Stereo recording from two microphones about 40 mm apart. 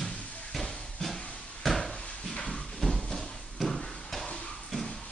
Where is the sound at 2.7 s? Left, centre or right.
Centre.